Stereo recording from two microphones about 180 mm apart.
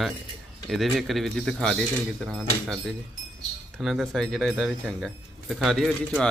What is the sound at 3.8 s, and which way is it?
Speech, centre (ahead or behind).